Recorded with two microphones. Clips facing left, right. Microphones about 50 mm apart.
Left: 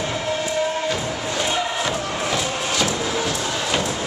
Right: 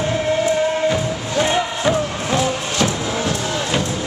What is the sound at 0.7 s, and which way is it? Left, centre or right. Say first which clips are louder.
Music: right 5 dB; centre.